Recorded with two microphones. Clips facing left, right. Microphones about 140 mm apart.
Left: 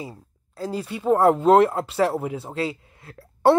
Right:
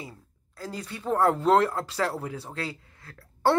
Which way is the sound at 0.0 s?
25° left (ahead or behind).